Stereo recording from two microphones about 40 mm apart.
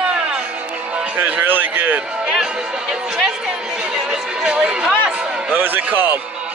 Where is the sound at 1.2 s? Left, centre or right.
Right.